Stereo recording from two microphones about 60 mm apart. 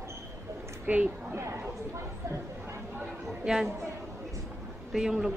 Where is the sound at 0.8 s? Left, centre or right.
Right.